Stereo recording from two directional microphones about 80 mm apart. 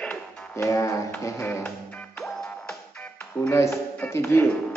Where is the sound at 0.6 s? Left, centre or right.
Left.